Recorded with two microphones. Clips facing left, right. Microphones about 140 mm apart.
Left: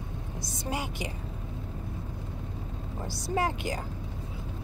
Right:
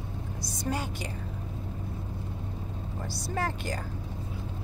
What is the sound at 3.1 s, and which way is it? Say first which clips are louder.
Speech: left 4 dB; 15° left (ahead or behind).